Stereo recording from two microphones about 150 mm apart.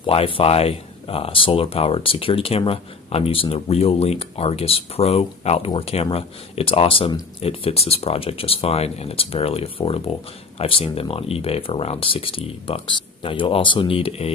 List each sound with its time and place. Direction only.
0.0 s speech: 35° left (ahead or behind)